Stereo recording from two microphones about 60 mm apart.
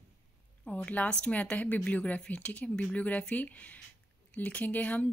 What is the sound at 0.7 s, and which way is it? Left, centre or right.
A woman's voice, left.